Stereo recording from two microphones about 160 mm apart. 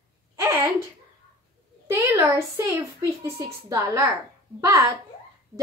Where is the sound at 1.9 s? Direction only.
10° right (ahead or behind).